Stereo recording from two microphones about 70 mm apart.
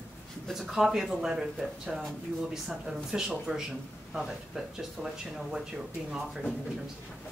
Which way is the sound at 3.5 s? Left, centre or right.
Centre.